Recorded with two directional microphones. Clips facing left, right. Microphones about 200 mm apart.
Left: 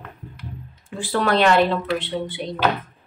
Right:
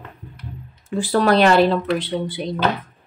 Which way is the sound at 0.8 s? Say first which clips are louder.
Right 5 dB; 40° right (ahead or behind).